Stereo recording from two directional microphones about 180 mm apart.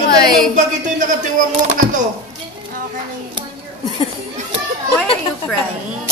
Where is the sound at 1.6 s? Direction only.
45° right (ahead or behind).